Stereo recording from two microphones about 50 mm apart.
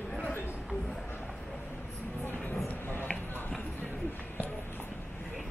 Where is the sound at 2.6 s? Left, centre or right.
Left.